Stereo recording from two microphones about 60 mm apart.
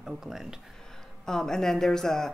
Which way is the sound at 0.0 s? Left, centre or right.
Centre.